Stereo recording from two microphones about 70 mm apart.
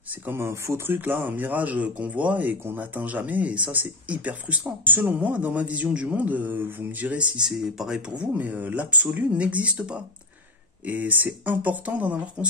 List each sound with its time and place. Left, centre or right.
0.2 s speech: right